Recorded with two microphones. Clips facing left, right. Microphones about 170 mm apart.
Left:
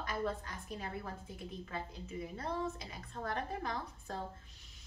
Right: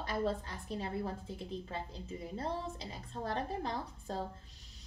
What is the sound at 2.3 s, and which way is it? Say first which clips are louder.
A woman's voice: right 1 dB; 30° right (ahead or behind).